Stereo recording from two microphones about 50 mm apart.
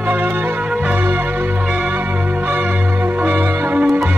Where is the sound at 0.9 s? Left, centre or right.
Right.